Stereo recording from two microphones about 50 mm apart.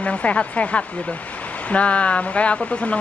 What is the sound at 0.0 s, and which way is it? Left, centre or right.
Speech, left.